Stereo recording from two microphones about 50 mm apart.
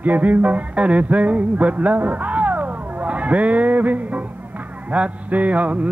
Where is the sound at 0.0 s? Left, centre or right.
Right.